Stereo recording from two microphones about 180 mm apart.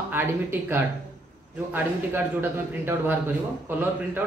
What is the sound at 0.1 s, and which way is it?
Speech, 10° right (ahead or behind).